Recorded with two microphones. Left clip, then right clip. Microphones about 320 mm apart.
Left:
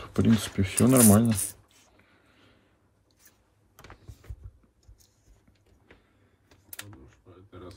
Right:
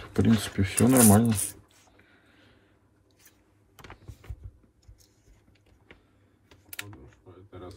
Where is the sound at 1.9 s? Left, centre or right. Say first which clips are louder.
Right 2 dB; centre.